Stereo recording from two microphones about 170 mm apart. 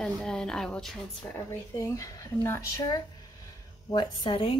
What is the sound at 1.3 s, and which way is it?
Speech, 15° left (ahead or behind).